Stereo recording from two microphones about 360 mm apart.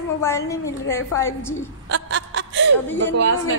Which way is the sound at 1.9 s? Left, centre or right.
Right.